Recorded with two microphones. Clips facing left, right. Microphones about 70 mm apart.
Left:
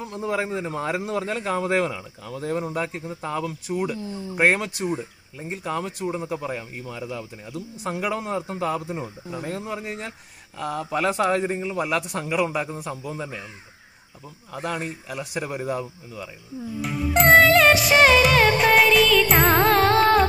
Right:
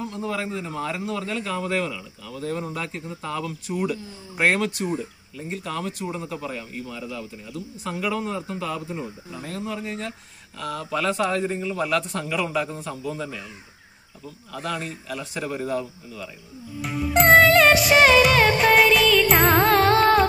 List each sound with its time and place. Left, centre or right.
0.1 s a man's voice: left
3.6 s a man's voice: centre
4.8 s a man's voice: centre
14.5 s a man's voice: left
16.8 s music: centre